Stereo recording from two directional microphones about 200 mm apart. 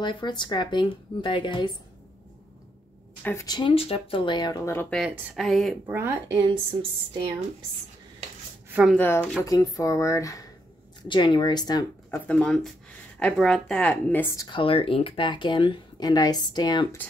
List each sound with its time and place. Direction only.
0.0 s speech: 20° left (ahead or behind)
3.3 s speech: 15° left (ahead or behind)
4.9 s speech: centre (ahead or behind)
5.9 s speech: 10° right (ahead or behind)
8.6 s a sound: 10° right (ahead or behind)
8.9 s speech: 10° left (ahead or behind)
12.3 s speech: 5° left (ahead or behind); by 17.0 s 20° left (ahead or behind)